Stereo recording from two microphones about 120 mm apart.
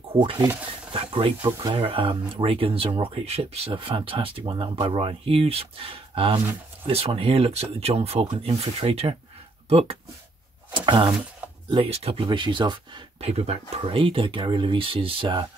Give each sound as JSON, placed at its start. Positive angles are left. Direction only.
{"t": 0.1, "sound": "speech", "side_deg": -45}
{"t": 10.7, "sound": "a sound", "side_deg": -40}
{"t": 11.7, "sound": "speech", "side_deg": -50}
{"t": 13.2, "sound": "speech", "side_deg": -60}